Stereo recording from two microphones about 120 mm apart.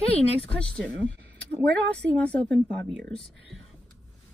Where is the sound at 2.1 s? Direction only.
10° left (ahead or behind).